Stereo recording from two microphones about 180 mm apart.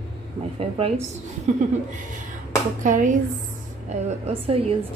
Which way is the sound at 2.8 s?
45° right (ahead or behind).